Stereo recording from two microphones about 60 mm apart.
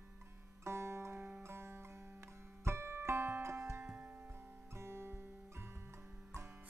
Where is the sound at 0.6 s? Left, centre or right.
Right.